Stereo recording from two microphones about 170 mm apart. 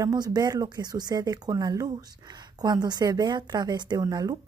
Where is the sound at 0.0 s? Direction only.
25° right (ahead or behind).